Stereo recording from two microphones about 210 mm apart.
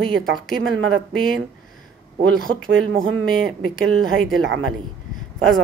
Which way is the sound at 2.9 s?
70° right (ahead or behind).